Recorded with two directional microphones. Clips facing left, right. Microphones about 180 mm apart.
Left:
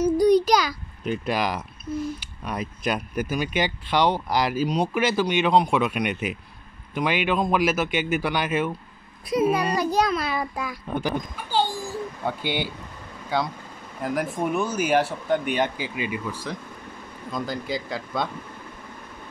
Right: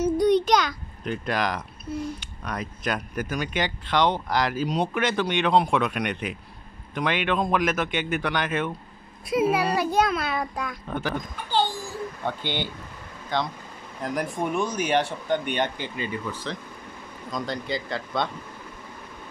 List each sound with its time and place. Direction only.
0.0 s a sound: centre (ahead or behind)
2.1 s speech: 10° left (ahead or behind)
9.3 s speech: 5° right (ahead or behind)
10.9 s speech: 15° left (ahead or behind)